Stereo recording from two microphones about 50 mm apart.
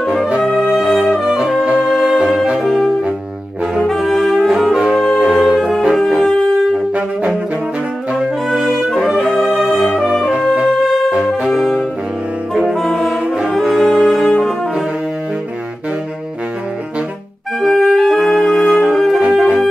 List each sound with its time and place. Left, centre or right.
0.6 s brass instrument: centre
1.8 s music: centre
2.6 s saxophone: centre
3.8 s brass instrument: centre
4.5 s saxophone: centre
5.2 s music: centre
8.1 s brass instrument: centre
10.3 s music: centre
10.6 s brass instrument: centre
11.5 s saxophone: centre
12.7 s brass instrument: centre
17.6 s music: centre
18.9 s wind instrument: centre